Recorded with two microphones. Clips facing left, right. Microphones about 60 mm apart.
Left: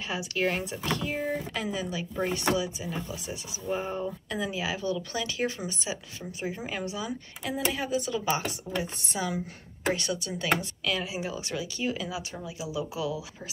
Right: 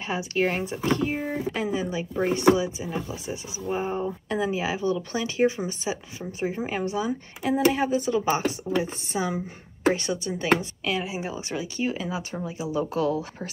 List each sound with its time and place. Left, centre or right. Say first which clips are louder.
0.0 s speech: right 4 dB; right
1.2 s speech: right 2 dB; centre
1.5 s speech: right 5 dB; right